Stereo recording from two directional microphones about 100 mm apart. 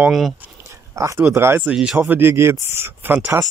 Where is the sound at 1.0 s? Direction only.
25° right (ahead or behind).